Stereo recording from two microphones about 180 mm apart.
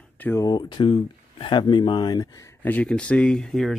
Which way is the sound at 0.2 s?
15° left (ahead or behind).